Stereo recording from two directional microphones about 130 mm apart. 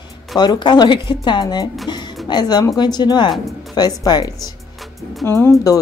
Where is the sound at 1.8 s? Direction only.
35° left (ahead or behind).